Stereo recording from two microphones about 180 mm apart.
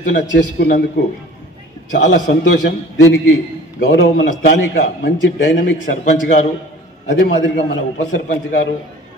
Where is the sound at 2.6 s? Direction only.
80° left.